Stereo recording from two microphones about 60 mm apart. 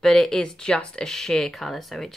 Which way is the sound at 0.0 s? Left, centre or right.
Centre.